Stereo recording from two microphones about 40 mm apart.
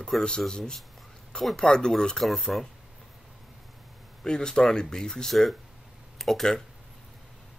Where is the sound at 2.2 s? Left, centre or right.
Centre.